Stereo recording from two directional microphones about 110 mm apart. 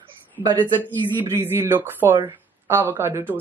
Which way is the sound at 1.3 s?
20° right (ahead or behind).